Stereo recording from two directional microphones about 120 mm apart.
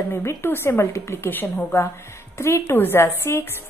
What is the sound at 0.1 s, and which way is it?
A woman's voice, 20° left (ahead or behind).